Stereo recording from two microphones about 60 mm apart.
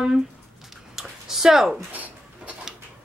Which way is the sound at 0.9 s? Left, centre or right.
Centre.